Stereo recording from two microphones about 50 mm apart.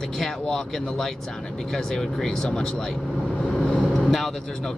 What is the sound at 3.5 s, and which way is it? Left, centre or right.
Vehicle, centre.